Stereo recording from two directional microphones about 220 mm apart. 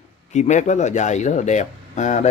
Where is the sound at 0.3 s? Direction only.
30° left (ahead or behind).